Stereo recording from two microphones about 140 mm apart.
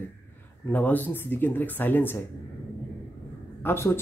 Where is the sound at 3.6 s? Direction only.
15° left (ahead or behind).